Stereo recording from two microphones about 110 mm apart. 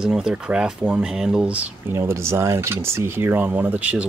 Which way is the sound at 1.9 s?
25° right (ahead or behind).